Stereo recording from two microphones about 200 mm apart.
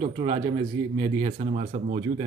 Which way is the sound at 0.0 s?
30° right (ahead or behind).